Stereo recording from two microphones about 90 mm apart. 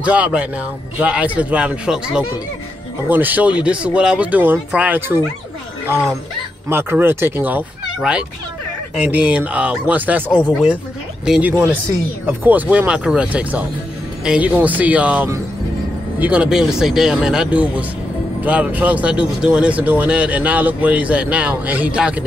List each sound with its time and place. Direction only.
0.0 s speech: 15° right (ahead or behind)
6.7 s speech: 25° right (ahead or behind)
8.0 s speech: 10° right (ahead or behind)